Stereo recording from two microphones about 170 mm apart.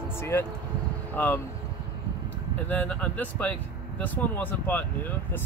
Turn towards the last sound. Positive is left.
turn(degrees=10)  # may be behind; listen again after turning